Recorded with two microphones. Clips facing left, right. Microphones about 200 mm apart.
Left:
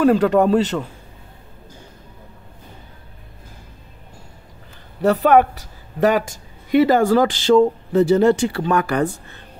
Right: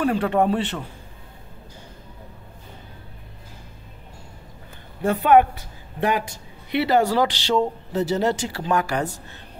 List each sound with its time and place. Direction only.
0.0 s a man's voice: 40° left (ahead or behind)
5.0 s a woman's voice: 40° left (ahead or behind); by 9.2 s 55° left (ahead or behind)